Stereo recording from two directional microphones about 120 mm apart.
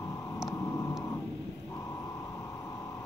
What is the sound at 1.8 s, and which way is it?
Vehicle, 25° left (ahead or behind).